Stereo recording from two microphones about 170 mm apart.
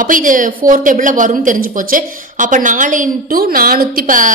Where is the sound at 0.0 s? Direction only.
50° right (ahead or behind).